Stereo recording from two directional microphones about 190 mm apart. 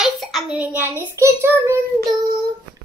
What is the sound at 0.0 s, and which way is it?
Child singing, centre (ahead or behind).